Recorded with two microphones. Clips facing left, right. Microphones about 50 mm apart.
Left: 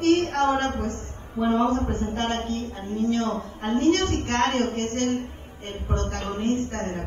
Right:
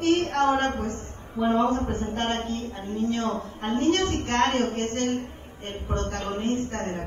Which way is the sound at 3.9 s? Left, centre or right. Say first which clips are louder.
Even; left.